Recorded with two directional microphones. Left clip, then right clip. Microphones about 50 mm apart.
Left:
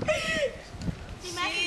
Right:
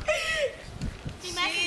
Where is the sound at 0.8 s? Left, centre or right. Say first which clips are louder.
Left 4 dB; right.